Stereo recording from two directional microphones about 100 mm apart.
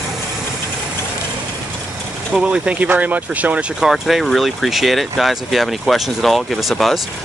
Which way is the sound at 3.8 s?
Centre (ahead or behind).